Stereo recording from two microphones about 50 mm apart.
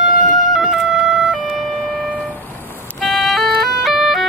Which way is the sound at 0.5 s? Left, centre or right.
Centre.